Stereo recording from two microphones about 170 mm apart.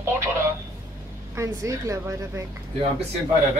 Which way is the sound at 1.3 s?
20° right (ahead or behind).